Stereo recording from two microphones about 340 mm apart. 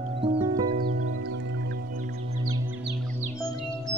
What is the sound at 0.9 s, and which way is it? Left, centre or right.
Music, right.